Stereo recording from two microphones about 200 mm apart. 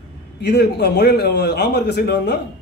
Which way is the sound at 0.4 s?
55° left (ahead or behind).